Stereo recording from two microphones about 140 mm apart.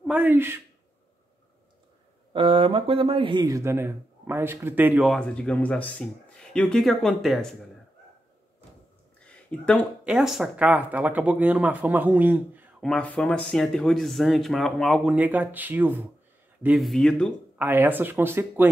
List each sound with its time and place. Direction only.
0.1 s speech: 15° right (ahead or behind)
2.3 s speech: 40° right (ahead or behind); by 5.0 s 15° right (ahead or behind)
5.0 s speech: 5° left (ahead or behind)
9.2 s a sound: 10° left (ahead or behind)
10.0 s speech: 5° right (ahead or behind)
12.8 s speech: 5° left (ahead or behind)
15.1 s speech: 10° right (ahead or behind)
16.6 s speech: centre (ahead or behind)
17.6 s speech: 15° right (ahead or behind)